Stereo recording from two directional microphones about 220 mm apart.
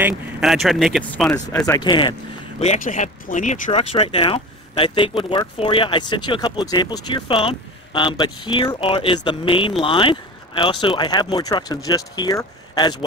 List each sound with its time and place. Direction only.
0.0 s speech: centre (ahead or behind)
1.7 s speech: 20° left (ahead or behind)
2.6 s speech: 35° left (ahead or behind); by 12.9 s 15° left (ahead or behind)